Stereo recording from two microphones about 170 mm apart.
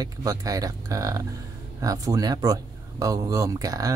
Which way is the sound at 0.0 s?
20° right (ahead or behind).